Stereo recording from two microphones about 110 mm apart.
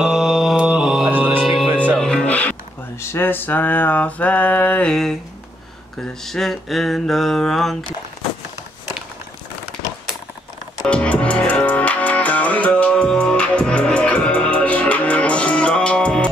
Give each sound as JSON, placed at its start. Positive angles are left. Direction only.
{"t": 0.0, "sound": "mantra", "side_deg": 0}
{"t": 1.1, "sound": "music", "side_deg": -15}
{"t": 1.4, "sound": "music", "side_deg": 0}
{"t": 3.0, "sound": "a sound", "side_deg": 20}
{"t": 10.9, "sound": "music", "side_deg": 10}